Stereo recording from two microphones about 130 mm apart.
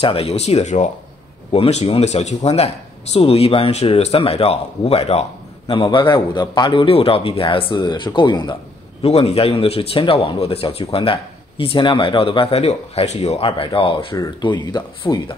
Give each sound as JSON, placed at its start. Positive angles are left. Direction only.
{"t": 0.0, "sound": "speech", "side_deg": 45}
{"t": 5.9, "sound": "speech", "side_deg": 35}
{"t": 9.0, "sound": "speech", "side_deg": 50}